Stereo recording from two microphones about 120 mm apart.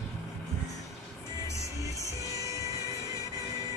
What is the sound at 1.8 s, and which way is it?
Music, 30° right (ahead or behind).